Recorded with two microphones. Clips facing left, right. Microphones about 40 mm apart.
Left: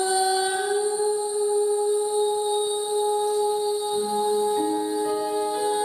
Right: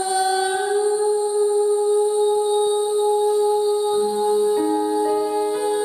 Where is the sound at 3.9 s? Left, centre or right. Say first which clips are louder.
Right 5 dB; centre.